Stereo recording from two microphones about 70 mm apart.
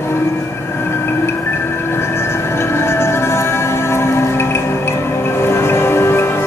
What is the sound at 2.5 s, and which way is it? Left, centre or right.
Music, left.